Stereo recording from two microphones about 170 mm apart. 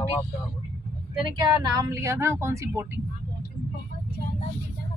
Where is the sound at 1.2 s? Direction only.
25° right (ahead or behind).